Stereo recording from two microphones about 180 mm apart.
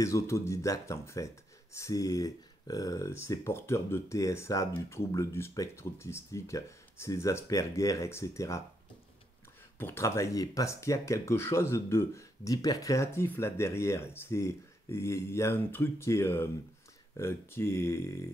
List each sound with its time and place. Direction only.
0.0 s speech: 15° left (ahead or behind)
9.8 s speech: 15° left (ahead or behind)